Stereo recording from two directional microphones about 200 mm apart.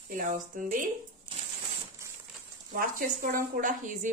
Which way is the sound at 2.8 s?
45° right (ahead or behind).